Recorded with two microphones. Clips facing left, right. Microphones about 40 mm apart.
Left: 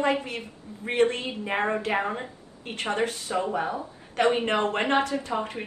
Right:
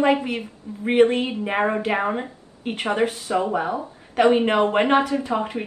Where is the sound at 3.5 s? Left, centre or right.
Centre.